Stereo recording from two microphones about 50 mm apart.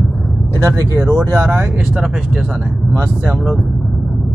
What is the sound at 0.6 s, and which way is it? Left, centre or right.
Speech, right.